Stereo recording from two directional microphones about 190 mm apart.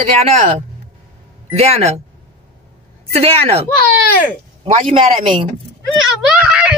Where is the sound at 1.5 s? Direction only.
35° right (ahead or behind).